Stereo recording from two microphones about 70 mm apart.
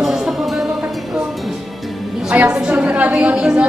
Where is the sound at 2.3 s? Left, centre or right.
Centre.